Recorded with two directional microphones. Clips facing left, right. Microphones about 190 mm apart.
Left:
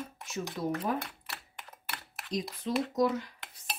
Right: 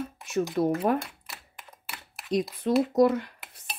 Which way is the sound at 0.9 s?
65° right (ahead or behind).